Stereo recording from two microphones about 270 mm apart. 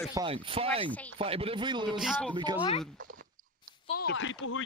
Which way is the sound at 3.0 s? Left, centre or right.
Right.